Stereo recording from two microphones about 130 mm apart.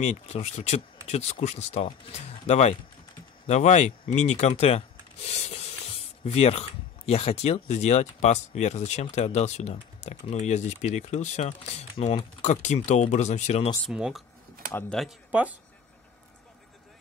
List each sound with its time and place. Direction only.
0.0 s speech: 55° left (ahead or behind)
13.8 s speech: 5° right (ahead or behind)